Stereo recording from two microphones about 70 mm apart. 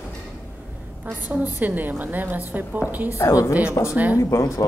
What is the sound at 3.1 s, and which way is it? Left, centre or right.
A man's voice, left.